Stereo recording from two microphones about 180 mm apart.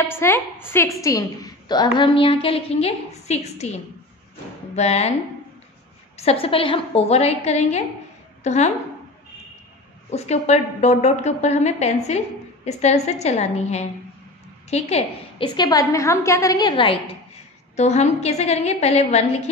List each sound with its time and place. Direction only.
0.0 s a woman's voice: 15° left (ahead or behind); by 5.1 s 35° left (ahead or behind)
6.1 s a woman's voice: 35° left (ahead or behind)
10.1 s a woman's voice: 35° left (ahead or behind)
17.7 s a woman's voice: 40° left (ahead or behind)